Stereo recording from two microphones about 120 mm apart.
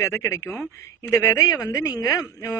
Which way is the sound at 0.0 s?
25° left (ahead or behind).